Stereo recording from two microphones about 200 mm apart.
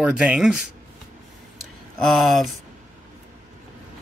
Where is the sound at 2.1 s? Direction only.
Centre (ahead or behind).